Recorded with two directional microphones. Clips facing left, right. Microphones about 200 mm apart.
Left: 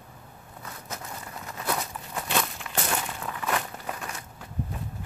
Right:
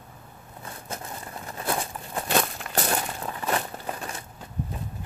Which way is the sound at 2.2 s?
40° right (ahead or behind).